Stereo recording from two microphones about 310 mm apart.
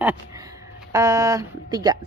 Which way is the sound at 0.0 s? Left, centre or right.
Centre.